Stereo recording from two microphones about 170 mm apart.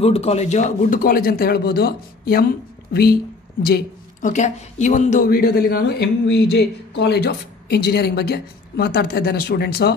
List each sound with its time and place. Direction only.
0.0 s a man's voice: 35° left (ahead or behind); by 3.2 s 65° left (ahead or behind)
4.2 s speech: 45° left (ahead or behind); by 9.9 s 70° left (ahead or behind)